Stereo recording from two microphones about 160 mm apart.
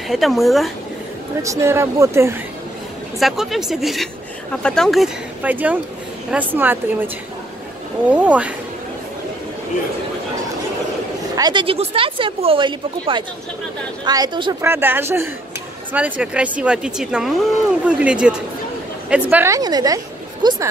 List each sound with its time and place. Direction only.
0.1 s speech: centre (ahead or behind)
1.4 s speech: 20° right (ahead or behind)
3.2 s speech: centre (ahead or behind)
8.1 s speech: 10° right (ahead or behind)
11.3 s a woman's voice: 25° right (ahead or behind)
14.6 s speech: 15° right (ahead or behind)
19.3 s a woman's voice: 20° right (ahead or behind)